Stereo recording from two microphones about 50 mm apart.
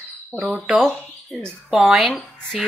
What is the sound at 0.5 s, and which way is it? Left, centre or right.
Speech, centre.